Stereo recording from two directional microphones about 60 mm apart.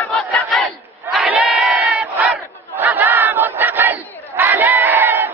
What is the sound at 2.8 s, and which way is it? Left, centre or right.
Battle cry, right.